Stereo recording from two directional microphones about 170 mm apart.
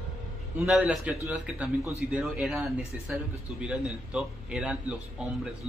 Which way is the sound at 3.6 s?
5° right (ahead or behind).